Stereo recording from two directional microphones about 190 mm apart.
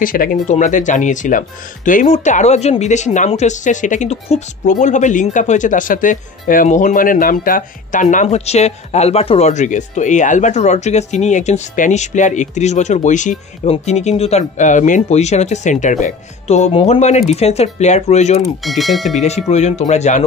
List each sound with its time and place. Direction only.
0.0 s speech: 45° left (ahead or behind)
18.6 s speech: centre (ahead or behind)
19.2 s speech: 35° left (ahead or behind)